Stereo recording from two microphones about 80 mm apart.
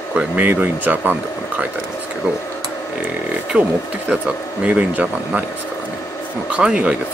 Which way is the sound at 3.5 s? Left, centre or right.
Centre.